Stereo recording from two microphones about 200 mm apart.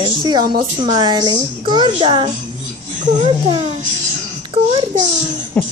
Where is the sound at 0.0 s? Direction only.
25° right (ahead or behind).